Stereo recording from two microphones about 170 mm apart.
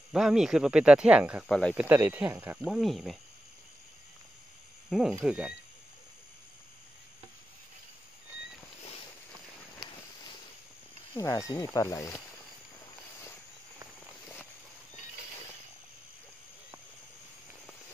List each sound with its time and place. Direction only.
0.1 s speech: 5° right (ahead or behind)
1.5 s speech: 5° left (ahead or behind)
1.8 s speech: 10° right (ahead or behind)
4.8 s a sound: centre (ahead or behind)
5.2 s speech: 5° right (ahead or behind)
11.1 s speech: 20° left (ahead or behind)